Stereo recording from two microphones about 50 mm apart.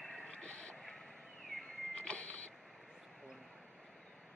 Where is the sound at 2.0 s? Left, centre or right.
Left.